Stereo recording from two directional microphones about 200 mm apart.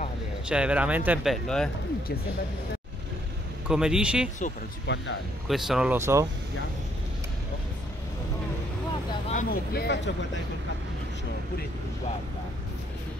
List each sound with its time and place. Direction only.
0.5 s speech: 5° right (ahead or behind)
3.6 s speech: 5° right (ahead or behind)
4.8 s speech: 65° left (ahead or behind)
5.5 s speech: 5° right (ahead or behind)
9.3 s speech: 45° left (ahead or behind)